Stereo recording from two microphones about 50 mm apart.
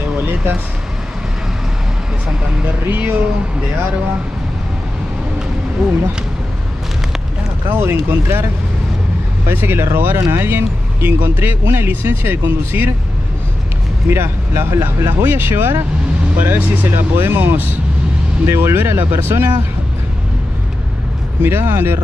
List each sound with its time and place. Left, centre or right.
2.6 s speech: right
7.7 s speech: right
9.5 s speech: right
14.0 s speech: right
21.4 s speech: right